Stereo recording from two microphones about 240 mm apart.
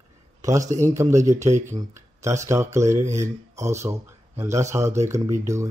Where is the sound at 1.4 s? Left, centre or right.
Right.